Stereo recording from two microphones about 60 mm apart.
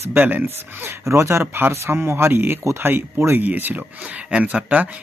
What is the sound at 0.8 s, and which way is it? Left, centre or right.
Speech, right.